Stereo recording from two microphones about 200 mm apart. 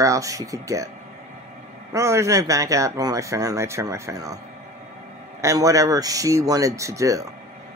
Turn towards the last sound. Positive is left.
turn(degrees=-15)  # may be behind; listen again after turning